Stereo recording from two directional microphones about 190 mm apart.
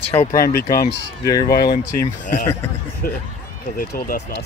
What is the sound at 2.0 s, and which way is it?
Speech, 40° left (ahead or behind).